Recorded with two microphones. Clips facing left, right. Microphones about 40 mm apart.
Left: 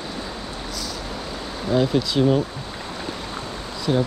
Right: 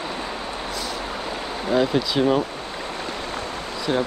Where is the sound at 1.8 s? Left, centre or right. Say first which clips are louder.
Left 1 dB; centre.